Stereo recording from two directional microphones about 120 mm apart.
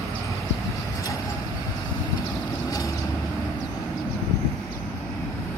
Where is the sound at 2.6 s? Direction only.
30° left (ahead or behind).